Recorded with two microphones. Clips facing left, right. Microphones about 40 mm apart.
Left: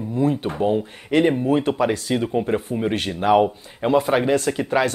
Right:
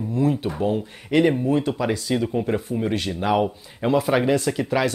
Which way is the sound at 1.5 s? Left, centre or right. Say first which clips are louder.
Left 3 dB; left.